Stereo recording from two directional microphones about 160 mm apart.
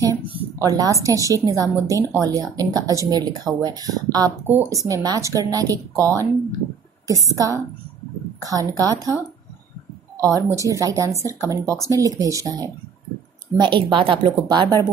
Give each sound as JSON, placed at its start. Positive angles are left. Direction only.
{"t": 0.0, "sound": "a sound", "side_deg": -20}
{"t": 0.7, "sound": "speech", "side_deg": -20}
{"t": 4.5, "sound": "speech", "side_deg": -10}
{"t": 7.2, "sound": "speech", "side_deg": -20}
{"t": 10.1, "sound": "speech", "side_deg": -20}